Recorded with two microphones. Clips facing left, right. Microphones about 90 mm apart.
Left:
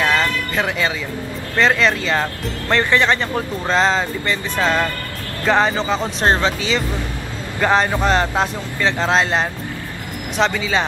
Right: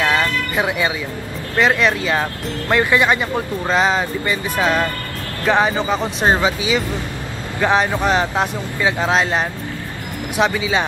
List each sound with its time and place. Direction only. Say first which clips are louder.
0.0 s music: even; 15° right (ahead or behind)
1.6 s speech: even; 10° right (ahead or behind)